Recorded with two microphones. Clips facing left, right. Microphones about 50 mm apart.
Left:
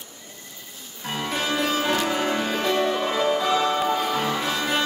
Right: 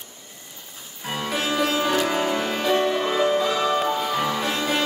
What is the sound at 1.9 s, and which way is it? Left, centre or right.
Music, centre.